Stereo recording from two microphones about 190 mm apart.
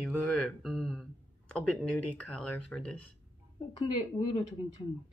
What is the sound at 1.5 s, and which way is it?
Speech, 5° left (ahead or behind).